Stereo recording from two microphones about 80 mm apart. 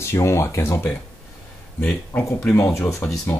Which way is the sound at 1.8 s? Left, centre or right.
Left.